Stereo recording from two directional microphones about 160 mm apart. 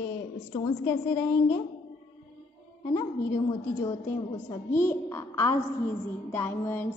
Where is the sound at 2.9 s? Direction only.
20° left (ahead or behind).